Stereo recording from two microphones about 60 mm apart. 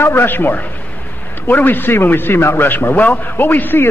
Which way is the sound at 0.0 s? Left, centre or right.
Left.